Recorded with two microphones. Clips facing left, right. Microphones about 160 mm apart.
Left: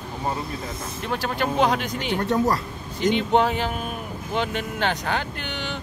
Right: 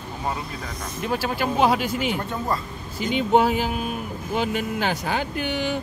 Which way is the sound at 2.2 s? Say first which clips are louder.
Left 5 dB; 80° left.